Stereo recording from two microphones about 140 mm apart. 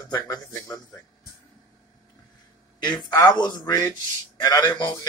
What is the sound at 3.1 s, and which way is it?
A man's voice, 30° left (ahead or behind).